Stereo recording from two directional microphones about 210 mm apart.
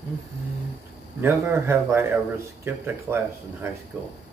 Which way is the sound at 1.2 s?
10° right (ahead or behind).